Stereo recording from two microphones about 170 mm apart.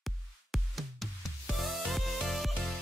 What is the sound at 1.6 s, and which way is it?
Music, centre (ahead or behind).